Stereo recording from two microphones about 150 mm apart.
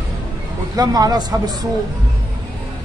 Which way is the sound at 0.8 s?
25° right (ahead or behind).